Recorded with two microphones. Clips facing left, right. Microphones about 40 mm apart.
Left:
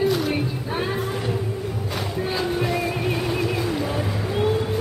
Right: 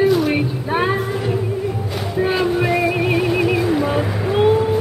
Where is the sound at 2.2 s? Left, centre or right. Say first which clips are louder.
Right 7 dB; right.